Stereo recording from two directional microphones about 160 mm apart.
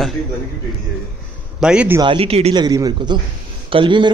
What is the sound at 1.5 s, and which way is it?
Speech, 5° right (ahead or behind).